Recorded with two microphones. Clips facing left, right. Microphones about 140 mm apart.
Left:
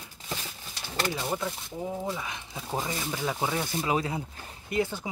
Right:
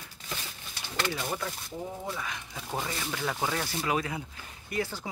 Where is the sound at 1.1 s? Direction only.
20° left (ahead or behind).